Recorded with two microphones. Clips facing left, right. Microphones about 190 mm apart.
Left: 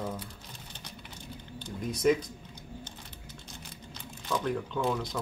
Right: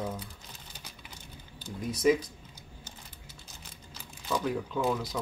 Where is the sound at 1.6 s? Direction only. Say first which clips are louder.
Even; centre (ahead or behind).